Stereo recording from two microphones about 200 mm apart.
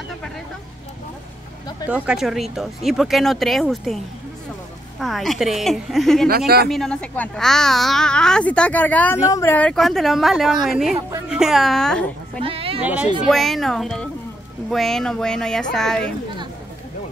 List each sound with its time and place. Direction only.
2.0 s speech: centre (ahead or behind)
6.2 s speech: 50° right (ahead or behind)
6.7 s speech: 5° left (ahead or behind)
12.4 s speech: 30° right (ahead or behind)
12.8 s a woman's voice: 5° right (ahead or behind)